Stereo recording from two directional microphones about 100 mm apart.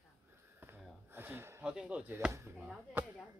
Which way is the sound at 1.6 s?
10° right (ahead or behind).